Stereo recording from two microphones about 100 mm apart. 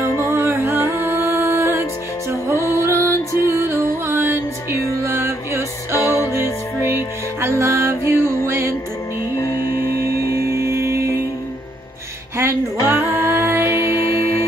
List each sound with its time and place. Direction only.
0.3 s music: 20° right (ahead or behind)
10.5 s music: 25° right (ahead or behind)
12.4 s music: 25° right (ahead or behind)